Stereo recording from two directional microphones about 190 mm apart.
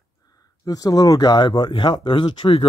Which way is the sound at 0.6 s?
20° left (ahead or behind).